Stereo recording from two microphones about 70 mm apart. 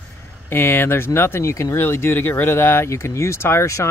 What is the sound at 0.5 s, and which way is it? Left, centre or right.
Speech, left.